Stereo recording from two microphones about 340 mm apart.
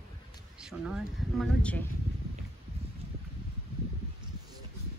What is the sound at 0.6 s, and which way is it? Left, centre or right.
Speech, centre.